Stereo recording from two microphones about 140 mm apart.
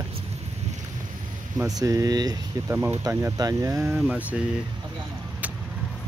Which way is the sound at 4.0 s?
5° right (ahead or behind).